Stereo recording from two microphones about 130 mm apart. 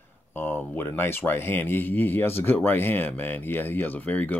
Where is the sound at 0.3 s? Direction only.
15° left (ahead or behind).